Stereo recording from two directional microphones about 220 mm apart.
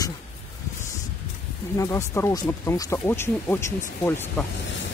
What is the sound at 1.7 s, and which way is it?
Speech, 10° left (ahead or behind).